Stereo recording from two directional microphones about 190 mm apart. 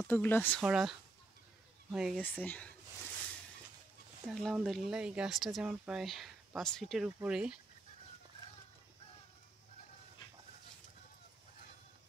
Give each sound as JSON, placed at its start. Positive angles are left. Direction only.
{"t": 0.0, "sound": "speech", "side_deg": 10}
{"t": 0.6, "sound": "speech", "side_deg": 0}
{"t": 2.1, "sound": "speech", "side_deg": 10}
{"t": 4.3, "sound": "speech", "side_deg": 0}